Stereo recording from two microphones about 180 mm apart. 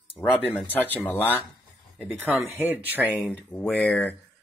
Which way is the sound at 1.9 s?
10° right (ahead or behind).